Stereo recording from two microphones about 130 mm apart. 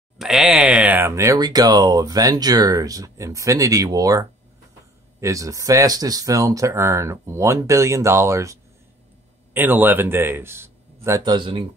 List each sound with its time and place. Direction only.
0.2 s a man's voice: 5° right (ahead or behind); by 11.3 s 20° right (ahead or behind)
11.3 s speech: 40° right (ahead or behind)